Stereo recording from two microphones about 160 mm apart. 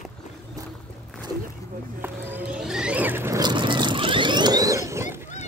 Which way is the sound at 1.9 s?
10° right (ahead or behind).